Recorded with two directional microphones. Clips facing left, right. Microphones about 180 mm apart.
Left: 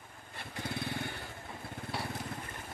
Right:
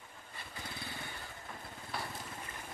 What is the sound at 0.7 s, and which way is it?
Lawn mower, 70° left (ahead or behind).